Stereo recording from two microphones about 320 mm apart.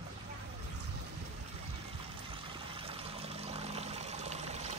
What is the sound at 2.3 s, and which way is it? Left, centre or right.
Pour, centre.